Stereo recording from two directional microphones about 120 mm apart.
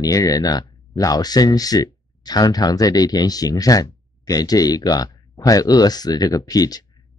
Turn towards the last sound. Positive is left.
turn(degrees=30)  # may be behind; listen again after turning